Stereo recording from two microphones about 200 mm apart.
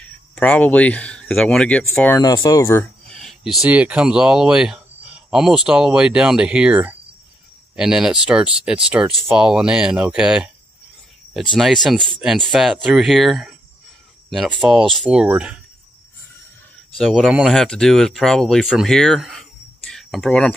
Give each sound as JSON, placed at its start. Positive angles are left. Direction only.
{"t": 0.0, "sound": "speech", "side_deg": 5}
{"t": 2.1, "sound": "speech", "side_deg": 20}
{"t": 3.1, "sound": "speech", "side_deg": 0}
{"t": 11.5, "sound": "speech", "side_deg": 0}
{"t": 16.9, "sound": "speech", "side_deg": 0}